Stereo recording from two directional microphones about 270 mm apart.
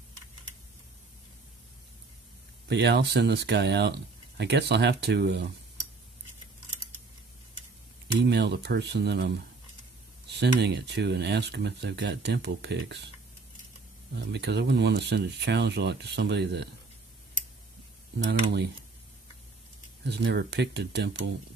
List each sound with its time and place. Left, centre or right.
2.7 s speech: right
8.2 s speech: right
14.1 s speech: right
20.1 s speech: right